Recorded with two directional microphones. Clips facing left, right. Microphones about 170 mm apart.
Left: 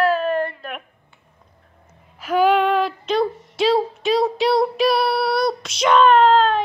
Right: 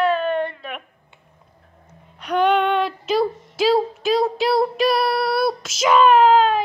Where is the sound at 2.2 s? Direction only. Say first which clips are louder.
Left 1 dB; 5° left (ahead or behind).